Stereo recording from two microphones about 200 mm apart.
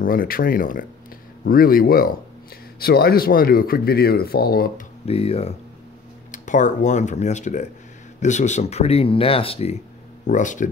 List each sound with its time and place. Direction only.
0.0 s speech: 45° left (ahead or behind)
5.0 s speech: 30° left (ahead or behind)